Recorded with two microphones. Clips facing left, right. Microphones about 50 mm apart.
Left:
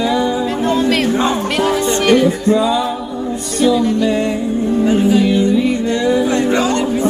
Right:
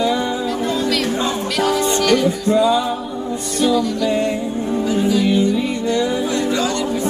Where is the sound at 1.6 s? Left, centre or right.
Left.